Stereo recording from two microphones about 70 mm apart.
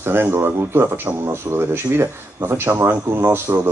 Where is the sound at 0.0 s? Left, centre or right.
Right.